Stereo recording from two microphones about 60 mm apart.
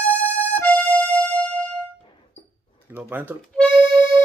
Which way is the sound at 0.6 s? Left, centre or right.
Left.